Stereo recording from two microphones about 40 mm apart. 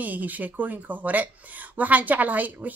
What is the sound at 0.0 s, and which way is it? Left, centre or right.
Speech, right.